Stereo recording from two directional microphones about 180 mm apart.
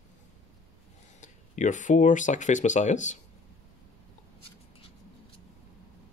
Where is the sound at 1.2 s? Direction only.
45° left (ahead or behind).